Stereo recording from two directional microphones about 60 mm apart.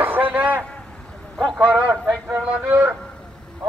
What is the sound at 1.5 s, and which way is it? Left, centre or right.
Speech, centre.